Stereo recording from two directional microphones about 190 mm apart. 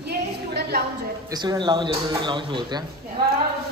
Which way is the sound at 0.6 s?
60° right (ahead or behind).